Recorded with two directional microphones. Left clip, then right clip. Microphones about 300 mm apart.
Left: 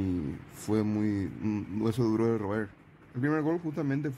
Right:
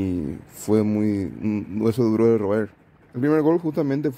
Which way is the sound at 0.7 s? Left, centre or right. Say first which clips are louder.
Right 9 dB; centre.